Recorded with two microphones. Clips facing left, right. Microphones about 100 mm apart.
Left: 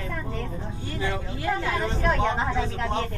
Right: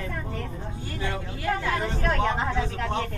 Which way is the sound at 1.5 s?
25° left (ahead or behind).